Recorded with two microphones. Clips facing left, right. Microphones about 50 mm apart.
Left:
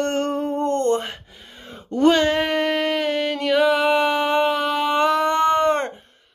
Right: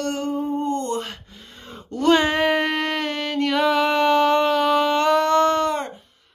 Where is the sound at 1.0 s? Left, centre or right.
Centre.